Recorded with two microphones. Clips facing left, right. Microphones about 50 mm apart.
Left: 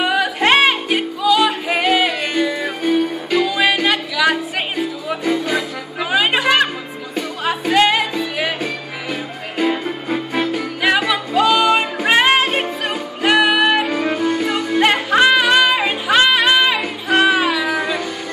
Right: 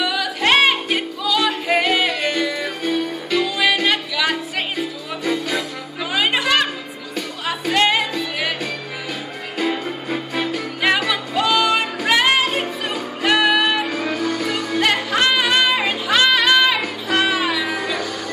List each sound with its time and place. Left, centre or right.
0.0 s music: left
0.5 s music: centre
12.1 s music: left
12.9 s music: centre